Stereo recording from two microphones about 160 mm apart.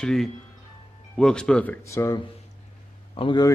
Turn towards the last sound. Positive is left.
turn(degrees=30)  # may be behind; listen again after turning